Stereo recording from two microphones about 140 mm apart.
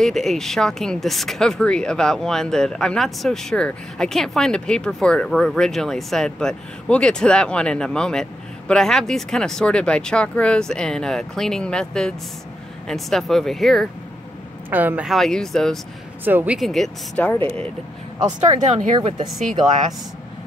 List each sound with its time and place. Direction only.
0.0 s speech: centre (ahead or behind)
14.7 s speech: 10° right (ahead or behind)
15.1 s speech: 5° left (ahead or behind)
16.3 s speech: 15° right (ahead or behind)
16.5 s speech: centre (ahead or behind)
18.7 s speech: 60° right (ahead or behind)